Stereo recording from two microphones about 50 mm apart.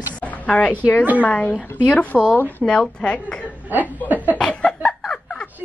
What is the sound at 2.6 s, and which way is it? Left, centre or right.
Speech, centre.